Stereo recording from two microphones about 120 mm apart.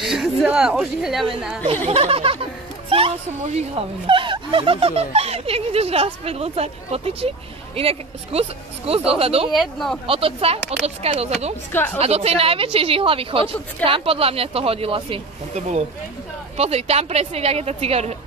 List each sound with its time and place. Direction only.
0.0 s a sound: centre (ahead or behind)
0.5 s speech: 5° right (ahead or behind)
1.9 s speech: 55° right (ahead or behind)
4.1 s speech: 45° right (ahead or behind)
9.5 s speech: centre (ahead or behind)
10.0 s speech: 50° right (ahead or behind)
11.7 s a woman's voice: 15° left (ahead or behind)
12.0 s speech: 55° right (ahead or behind)